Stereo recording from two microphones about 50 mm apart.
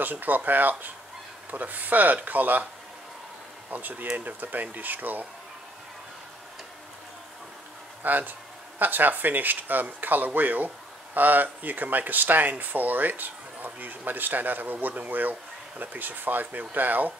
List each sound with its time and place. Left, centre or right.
0.0 s speech: right
3.7 s speech: right
8.0 s speech: right